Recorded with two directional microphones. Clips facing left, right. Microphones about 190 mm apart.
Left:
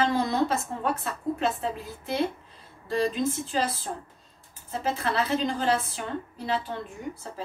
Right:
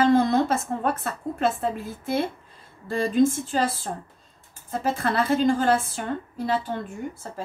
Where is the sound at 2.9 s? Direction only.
50° right (ahead or behind).